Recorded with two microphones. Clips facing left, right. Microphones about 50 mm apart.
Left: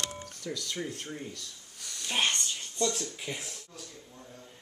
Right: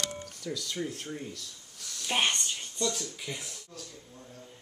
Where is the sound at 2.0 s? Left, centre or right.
Centre.